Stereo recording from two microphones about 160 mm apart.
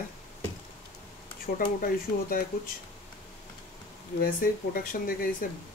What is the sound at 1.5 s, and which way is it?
Speech, 60° left (ahead or behind).